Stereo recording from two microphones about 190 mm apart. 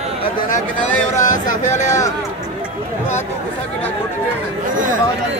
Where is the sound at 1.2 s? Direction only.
45° left (ahead or behind).